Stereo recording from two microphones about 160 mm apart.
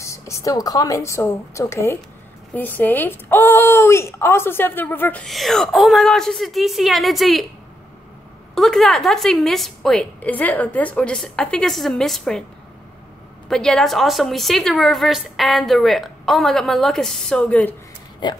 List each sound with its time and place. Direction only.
0.0 s speech: 20° left (ahead or behind); by 7.4 s centre (ahead or behind)
8.5 s a woman's voice: 5° left (ahead or behind)
13.5 s a woman's voice: 5° left (ahead or behind)
18.2 s speech: 30° left (ahead or behind)